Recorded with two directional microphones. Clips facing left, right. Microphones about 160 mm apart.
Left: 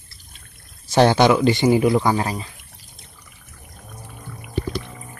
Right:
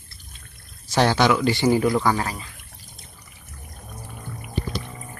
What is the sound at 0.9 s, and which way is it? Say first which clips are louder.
Speech: left 4 dB; 25° left (ahead or behind).